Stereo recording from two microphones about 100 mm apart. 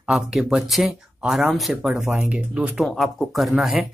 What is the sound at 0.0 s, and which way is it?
Speech, 5° right (ahead or behind).